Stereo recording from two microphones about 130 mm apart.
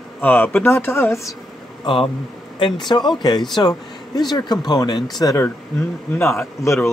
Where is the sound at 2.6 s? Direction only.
35° left (ahead or behind).